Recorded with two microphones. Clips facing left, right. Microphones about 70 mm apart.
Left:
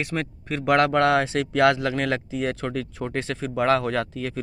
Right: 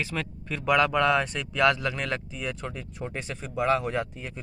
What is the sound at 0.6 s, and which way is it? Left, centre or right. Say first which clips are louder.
Speech: left 3 dB; left.